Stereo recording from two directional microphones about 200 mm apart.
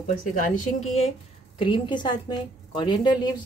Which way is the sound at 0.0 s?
40° left (ahead or behind).